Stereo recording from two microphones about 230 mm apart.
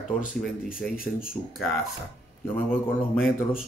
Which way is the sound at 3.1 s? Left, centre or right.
Centre.